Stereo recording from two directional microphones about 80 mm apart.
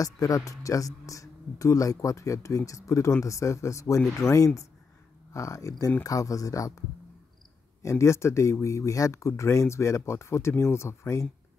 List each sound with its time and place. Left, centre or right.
0.0 s speech: left
7.8 s speech: left